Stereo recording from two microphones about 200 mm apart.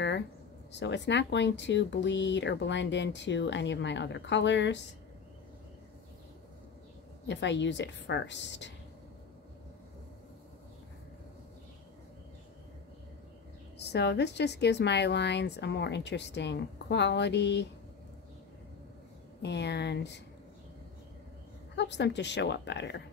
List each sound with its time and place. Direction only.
0.7 s speech: 60° left (ahead or behind)
7.2 s speech: 65° left (ahead or behind)
13.7 s speech: 55° left (ahead or behind)
19.4 s speech: 60° left (ahead or behind)
21.7 s speech: 60° left (ahead or behind)